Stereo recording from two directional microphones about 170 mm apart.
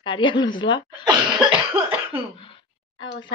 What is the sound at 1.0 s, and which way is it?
Cough, 25° right (ahead or behind).